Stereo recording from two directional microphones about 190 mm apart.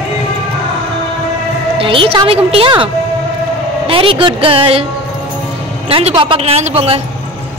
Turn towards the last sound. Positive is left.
turn(degrees=-30)  # may be behind; listen again after turning